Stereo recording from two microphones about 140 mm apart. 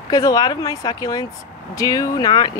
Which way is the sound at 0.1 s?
25° left (ahead or behind).